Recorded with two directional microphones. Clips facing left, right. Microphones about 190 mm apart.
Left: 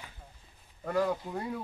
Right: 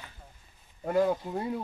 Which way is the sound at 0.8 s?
25° right (ahead or behind).